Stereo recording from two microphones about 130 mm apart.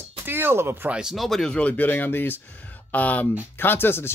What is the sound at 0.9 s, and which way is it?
Speech, centre (ahead or behind).